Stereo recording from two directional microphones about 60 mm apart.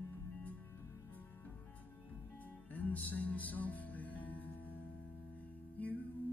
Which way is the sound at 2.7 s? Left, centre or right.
Left.